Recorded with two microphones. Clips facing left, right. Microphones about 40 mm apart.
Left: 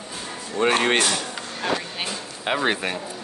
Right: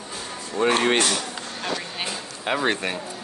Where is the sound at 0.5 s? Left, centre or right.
Left.